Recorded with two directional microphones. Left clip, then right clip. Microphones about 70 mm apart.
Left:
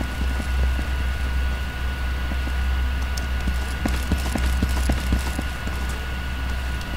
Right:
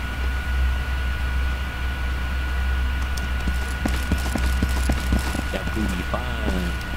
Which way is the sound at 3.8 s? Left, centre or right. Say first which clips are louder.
Even; centre.